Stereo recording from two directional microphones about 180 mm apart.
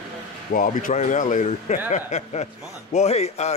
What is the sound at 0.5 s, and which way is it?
A man's voice, 50° left (ahead or behind).